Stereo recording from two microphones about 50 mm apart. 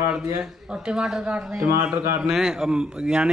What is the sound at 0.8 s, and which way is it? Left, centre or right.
Speech, centre.